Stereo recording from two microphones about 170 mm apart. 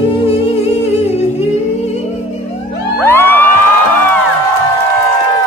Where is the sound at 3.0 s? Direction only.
10° left (ahead or behind).